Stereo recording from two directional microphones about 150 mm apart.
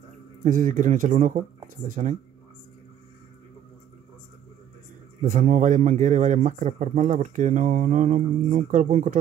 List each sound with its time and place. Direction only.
0.4 s speech: 60° right (ahead or behind)
5.2 s speech: 60° right (ahead or behind)